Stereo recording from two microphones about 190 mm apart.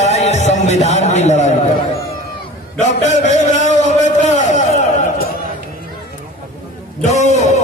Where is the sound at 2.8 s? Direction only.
40° left (ahead or behind).